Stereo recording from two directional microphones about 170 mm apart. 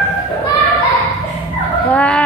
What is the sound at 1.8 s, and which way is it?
Speech, 5° left (ahead or behind).